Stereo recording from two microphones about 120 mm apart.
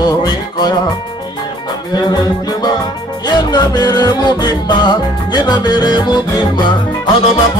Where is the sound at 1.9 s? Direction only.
35° left (ahead or behind).